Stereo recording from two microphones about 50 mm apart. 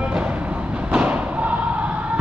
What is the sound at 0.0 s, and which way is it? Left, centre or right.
Train, right.